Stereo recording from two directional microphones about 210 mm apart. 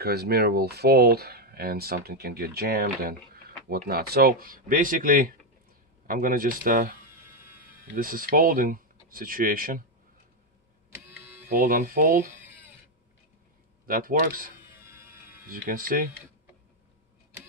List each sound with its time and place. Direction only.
0.0 s speech: 50° right (ahead or behind)
10.9 s printer: 10° right (ahead or behind)
11.4 s speech: 40° right (ahead or behind)
13.8 s speech: 40° right (ahead or behind)
15.5 s speech: 40° right (ahead or behind)